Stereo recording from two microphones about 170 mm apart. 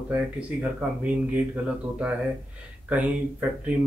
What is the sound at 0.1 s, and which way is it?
Speech, 10° right (ahead or behind).